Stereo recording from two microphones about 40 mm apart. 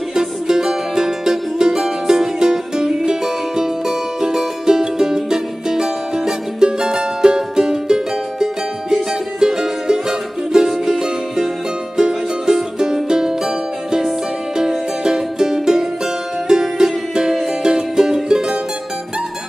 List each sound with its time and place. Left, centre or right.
0.1 s music: centre
15.0 s music: centre